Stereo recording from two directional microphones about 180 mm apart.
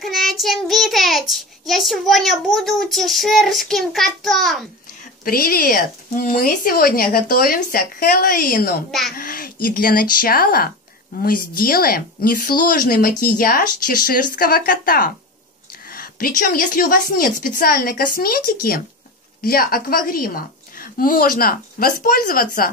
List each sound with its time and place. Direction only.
0.0 s a child's voice: centre (ahead or behind)
5.2 s speech: 55° left (ahead or behind)